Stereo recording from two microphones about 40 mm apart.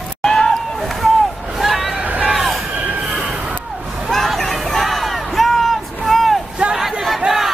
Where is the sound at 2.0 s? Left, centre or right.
Right.